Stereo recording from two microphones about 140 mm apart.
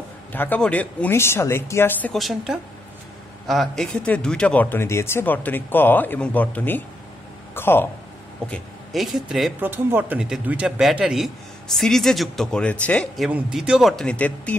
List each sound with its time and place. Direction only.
0.3 s speech: 10° left (ahead or behind)
2.1 s a man's voice: centre (ahead or behind); by 7.9 s 15° left (ahead or behind)
8.5 s speech: centre (ahead or behind)
9.6 s a man's voice: 15° right (ahead or behind); by 14.6 s 10° left (ahead or behind)